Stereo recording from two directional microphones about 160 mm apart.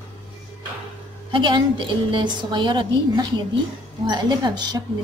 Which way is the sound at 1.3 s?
30° right (ahead or behind).